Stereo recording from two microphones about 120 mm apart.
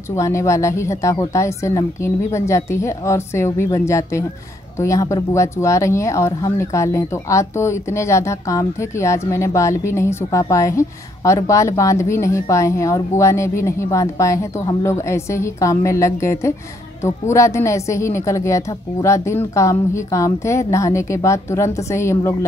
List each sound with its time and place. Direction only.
0.1 s speech: 25° left (ahead or behind)